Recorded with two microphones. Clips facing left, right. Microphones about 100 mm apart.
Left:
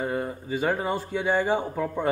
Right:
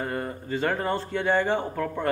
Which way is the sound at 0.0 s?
5° left (ahead or behind).